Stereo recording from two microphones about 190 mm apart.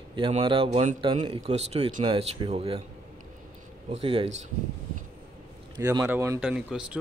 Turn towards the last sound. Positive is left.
turn(degrees=-5)  # may be behind; listen again after turning